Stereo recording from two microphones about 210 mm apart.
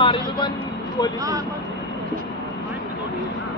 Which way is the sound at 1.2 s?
15° right (ahead or behind).